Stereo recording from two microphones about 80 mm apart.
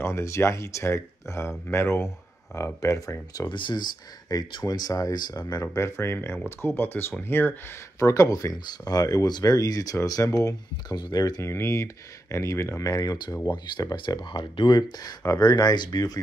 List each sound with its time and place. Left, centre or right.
0.0 s speech: left
3.4 s speech: left
5.8 s speech: left
8.0 s speech: left
11.0 s speech: left
11.4 s speech: left